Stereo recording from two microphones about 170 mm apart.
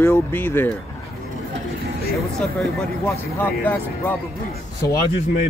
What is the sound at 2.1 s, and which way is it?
Speech, centre (ahead or behind).